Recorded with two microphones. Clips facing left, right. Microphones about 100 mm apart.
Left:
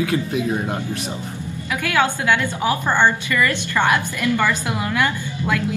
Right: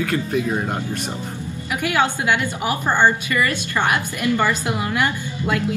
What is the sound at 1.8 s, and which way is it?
A woman's voice, 20° right (ahead or behind).